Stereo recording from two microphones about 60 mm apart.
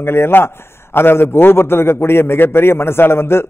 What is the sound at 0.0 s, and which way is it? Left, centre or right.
A man's voice, left.